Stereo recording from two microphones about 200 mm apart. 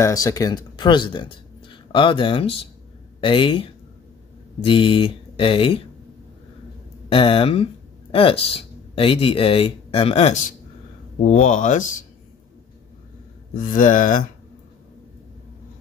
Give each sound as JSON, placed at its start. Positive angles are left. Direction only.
{"t": 0.0, "sound": "speech", "side_deg": 15}
{"t": 7.1, "sound": "speech", "side_deg": 25}
{"t": 13.6, "sound": "speech", "side_deg": 40}